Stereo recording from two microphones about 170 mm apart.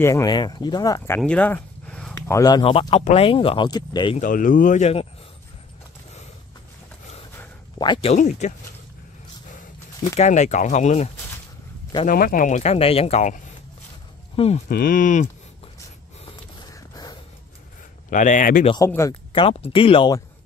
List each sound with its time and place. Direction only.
0.0 s speech: 20° left (ahead or behind)
2.6 s speech: 35° left (ahead or behind)
4.2 s speech: 50° left (ahead or behind)
7.8 s speech: 30° left (ahead or behind)
8.2 s speech: 45° left (ahead or behind)
10.1 s speech: 45° left (ahead or behind)
12.1 s speech: 55° left (ahead or behind); by 14.6 s 35° left (ahead or behind)
14.7 s speech: 60° left (ahead or behind)
16.3 s mechanisms: 25° left (ahead or behind)
18.1 s speech: 50° left (ahead or behind)
18.9 s speech: 15° left (ahead or behind)
19.3 s speech: 30° left (ahead or behind)